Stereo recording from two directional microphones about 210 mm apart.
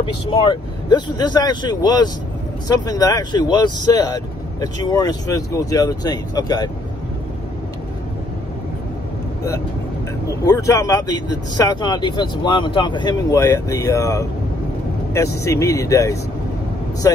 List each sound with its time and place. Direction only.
0.0 s speech: 25° left (ahead or behind)
10.4 s speech: 15° left (ahead or behind)
15.4 s speech: 15° left (ahead or behind)